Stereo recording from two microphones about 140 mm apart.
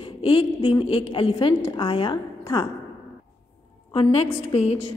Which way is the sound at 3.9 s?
45° left (ahead or behind).